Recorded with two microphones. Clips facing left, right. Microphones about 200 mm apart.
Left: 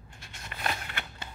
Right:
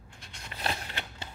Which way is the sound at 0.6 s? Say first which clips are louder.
Even; 30° right (ahead or behind).